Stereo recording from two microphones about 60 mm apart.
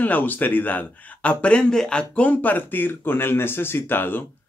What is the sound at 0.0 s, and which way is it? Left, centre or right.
A man's voice, left.